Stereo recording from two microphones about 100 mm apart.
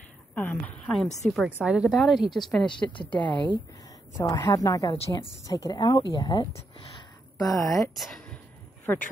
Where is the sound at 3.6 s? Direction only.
35° left (ahead or behind).